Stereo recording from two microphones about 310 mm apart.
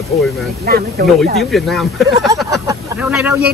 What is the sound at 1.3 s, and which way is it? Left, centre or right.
Speech, centre.